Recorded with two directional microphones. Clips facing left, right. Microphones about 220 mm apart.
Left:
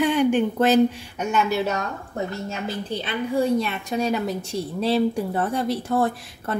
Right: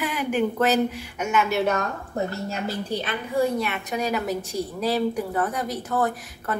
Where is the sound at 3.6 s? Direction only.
30° left (ahead or behind).